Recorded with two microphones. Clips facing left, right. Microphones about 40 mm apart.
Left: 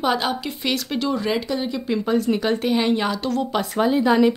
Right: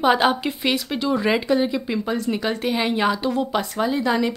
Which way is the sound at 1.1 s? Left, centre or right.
Right.